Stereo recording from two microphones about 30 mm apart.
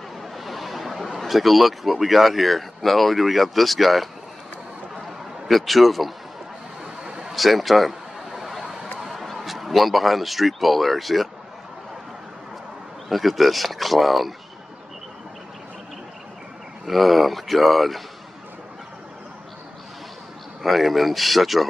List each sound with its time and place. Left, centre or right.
0.2 s speech: centre
5.5 s speech: centre
6.8 s a sound: right
7.3 s speech: centre
9.1 s speech: centre
13.1 s speech: centre
16.8 s speech: centre
20.6 s speech: centre